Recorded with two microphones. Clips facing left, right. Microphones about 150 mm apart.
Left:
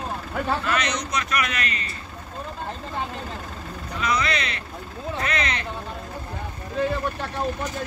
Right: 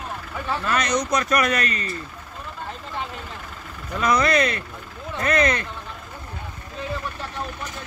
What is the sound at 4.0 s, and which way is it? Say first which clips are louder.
A man's voice: right 6 dB; 45° right (ahead or behind).